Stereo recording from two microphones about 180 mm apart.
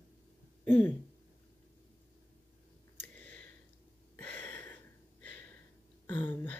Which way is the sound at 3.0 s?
10° left (ahead or behind).